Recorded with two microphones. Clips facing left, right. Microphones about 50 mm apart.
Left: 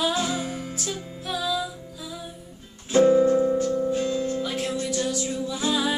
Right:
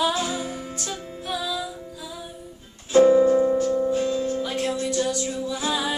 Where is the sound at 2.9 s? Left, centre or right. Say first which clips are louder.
Right 2 dB; centre.